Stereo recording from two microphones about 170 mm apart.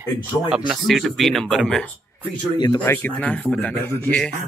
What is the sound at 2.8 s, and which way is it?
Speech, 10° left (ahead or behind).